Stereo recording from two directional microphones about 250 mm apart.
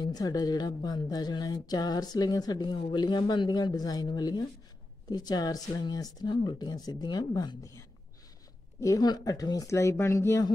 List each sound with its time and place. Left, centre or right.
0.0 s speech: centre
8.8 s speech: centre